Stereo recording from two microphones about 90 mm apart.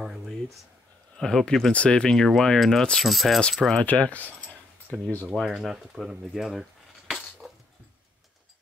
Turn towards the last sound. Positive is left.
turn(degrees=0)  # may be behind; listen again after turning